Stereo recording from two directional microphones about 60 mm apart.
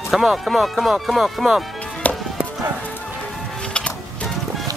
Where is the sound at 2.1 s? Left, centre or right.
Left.